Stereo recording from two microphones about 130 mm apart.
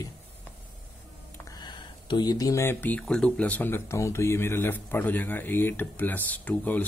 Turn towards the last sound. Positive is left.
turn(degrees=10)  # may be behind; listen again after turning